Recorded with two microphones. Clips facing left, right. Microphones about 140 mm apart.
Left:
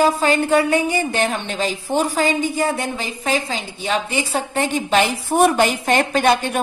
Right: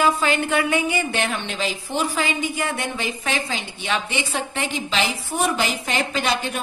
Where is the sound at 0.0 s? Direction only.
40° left (ahead or behind).